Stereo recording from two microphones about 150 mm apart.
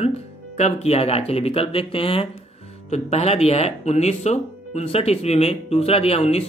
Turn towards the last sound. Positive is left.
turn(degrees=45)  # may be behind; listen again after turning